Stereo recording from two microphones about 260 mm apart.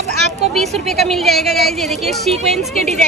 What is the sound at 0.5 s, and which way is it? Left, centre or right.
Speech, centre.